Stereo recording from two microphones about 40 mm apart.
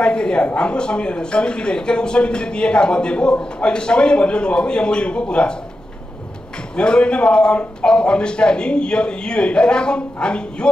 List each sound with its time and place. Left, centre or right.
0.0 s a woman's voice: left
6.8 s speech: left